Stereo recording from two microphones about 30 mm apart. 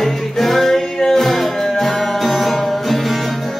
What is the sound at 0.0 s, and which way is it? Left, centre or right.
Music, centre.